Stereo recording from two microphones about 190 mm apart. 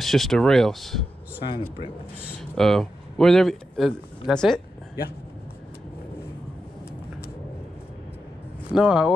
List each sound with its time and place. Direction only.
0.0 s speech: centre (ahead or behind)
1.4 s speech: 30° left (ahead or behind)
2.5 s speech: centre (ahead or behind)
8.7 s speech: centre (ahead or behind)